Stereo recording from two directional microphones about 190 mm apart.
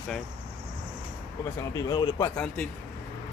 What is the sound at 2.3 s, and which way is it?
Speech, 5° left (ahead or behind).